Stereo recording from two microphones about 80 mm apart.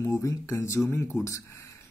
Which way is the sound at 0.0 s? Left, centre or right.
Left.